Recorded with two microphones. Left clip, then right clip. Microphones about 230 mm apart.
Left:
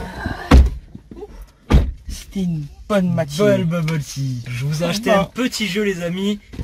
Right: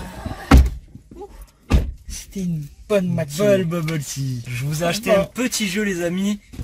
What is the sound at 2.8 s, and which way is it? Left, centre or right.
Speech, centre.